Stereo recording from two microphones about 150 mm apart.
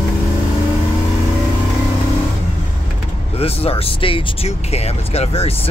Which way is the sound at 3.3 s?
40° left (ahead or behind).